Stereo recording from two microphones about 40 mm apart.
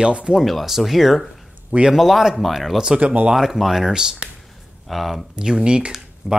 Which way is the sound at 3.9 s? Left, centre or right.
Centre.